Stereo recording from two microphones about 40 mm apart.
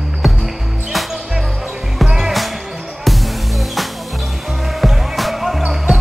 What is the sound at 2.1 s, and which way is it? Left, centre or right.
Music, centre.